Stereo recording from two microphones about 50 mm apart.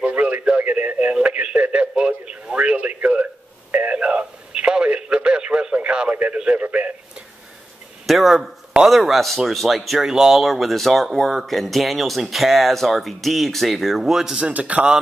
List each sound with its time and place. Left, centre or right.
0.0 s radio: right
8.1 s speech: centre
10.0 s speech: centre
10.4 s speech: centre
14.3 s a man's voice: right